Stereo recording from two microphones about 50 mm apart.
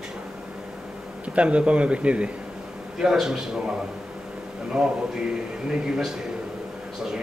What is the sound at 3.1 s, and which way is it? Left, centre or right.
Speech, centre.